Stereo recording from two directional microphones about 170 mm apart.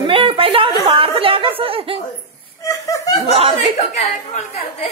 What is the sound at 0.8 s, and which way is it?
Chatter, 35° right (ahead or behind).